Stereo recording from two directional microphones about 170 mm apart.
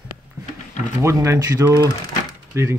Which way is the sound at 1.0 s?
15° right (ahead or behind).